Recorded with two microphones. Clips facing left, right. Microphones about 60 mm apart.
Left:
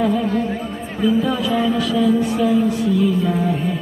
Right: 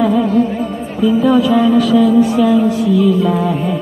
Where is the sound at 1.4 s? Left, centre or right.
Right.